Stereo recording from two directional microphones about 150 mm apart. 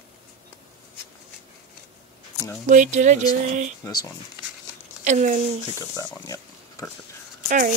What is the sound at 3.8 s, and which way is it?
Speech, 20° left (ahead or behind).